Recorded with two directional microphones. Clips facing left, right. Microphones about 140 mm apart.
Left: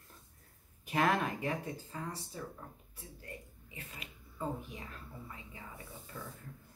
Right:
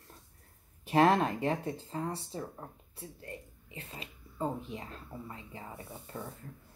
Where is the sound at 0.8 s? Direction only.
30° right (ahead or behind).